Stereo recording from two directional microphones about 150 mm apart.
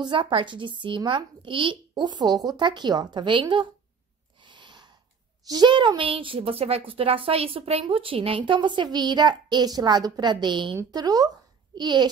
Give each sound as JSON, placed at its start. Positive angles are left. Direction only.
{"t": 0.0, "sound": "a woman's voice", "side_deg": -35}
{"t": 4.4, "sound": "a sound", "side_deg": -30}
{"t": 5.5, "sound": "a woman's voice", "side_deg": -30}